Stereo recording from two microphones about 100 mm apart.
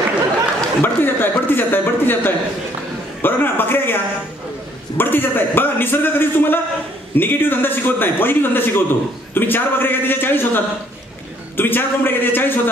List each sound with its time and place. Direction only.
0.8 s a man's voice: 20° left (ahead or behind)